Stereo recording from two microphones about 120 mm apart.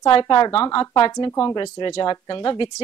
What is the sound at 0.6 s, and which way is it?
A woman's voice, 35° left (ahead or behind).